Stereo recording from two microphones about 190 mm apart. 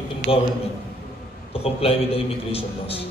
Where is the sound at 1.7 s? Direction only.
30° left (ahead or behind).